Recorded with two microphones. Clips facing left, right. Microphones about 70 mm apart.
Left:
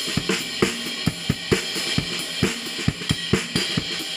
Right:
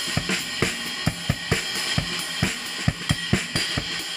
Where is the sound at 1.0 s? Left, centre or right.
Right.